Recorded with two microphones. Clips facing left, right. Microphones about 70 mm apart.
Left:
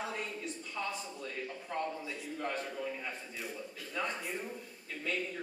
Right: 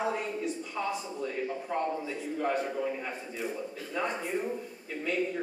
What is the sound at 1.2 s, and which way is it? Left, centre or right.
A man's voice, right.